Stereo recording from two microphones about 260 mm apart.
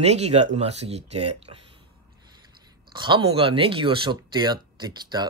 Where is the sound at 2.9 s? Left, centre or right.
Centre.